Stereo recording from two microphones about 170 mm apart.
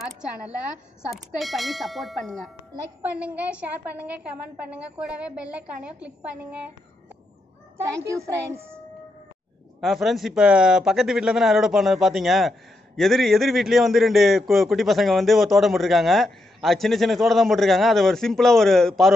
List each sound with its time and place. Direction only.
1.1 s a woman's voice: centre (ahead or behind)
7.7 s a woman's voice: 15° right (ahead or behind)
9.8 s speech: centre (ahead or behind)